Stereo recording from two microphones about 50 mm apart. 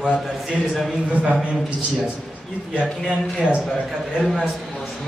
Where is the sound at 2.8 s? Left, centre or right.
Right.